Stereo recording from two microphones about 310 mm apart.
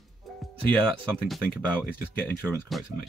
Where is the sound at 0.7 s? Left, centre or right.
Centre.